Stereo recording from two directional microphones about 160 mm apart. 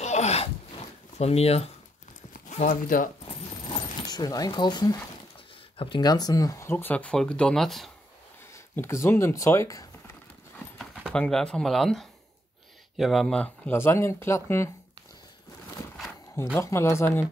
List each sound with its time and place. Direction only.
0.0 s a sound: 45° left (ahead or behind)
1.1 s speech: 40° left (ahead or behind)
2.3 s speech: 55° left (ahead or behind)
4.0 s speech: 25° left (ahead or behind); by 7.9 s centre (ahead or behind)
8.7 s speech: 15° left (ahead or behind)
10.8 s speech: centre (ahead or behind)
16.5 s speech: 15° left (ahead or behind)